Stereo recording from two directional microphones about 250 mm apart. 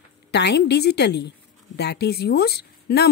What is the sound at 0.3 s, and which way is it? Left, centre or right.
Speech, left.